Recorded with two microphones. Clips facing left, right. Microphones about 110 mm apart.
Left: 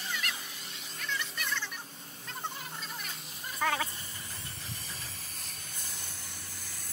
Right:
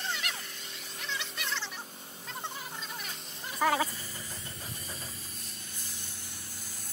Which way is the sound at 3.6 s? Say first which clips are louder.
Right 4 dB; 20° right (ahead or behind).